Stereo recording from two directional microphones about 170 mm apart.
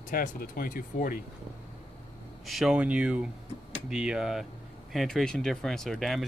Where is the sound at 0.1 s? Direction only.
55° left (ahead or behind).